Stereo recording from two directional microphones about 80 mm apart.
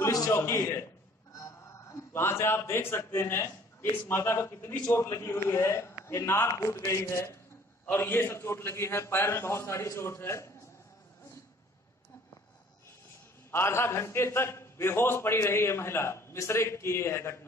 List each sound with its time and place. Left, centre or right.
0.0 s a sound: left
0.3 s a man's voice: left
13.5 s a man's voice: left